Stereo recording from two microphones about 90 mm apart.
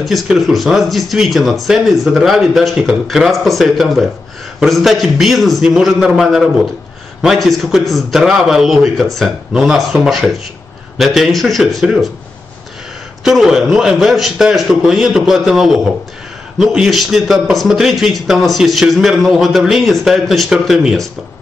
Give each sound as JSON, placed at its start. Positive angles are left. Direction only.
{"t": 0.0, "sound": "a man's voice", "side_deg": 0}
{"t": 13.2, "sound": "a man's voice", "side_deg": -5}